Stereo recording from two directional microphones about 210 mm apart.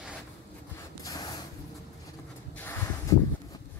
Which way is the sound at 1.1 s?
15° left (ahead or behind).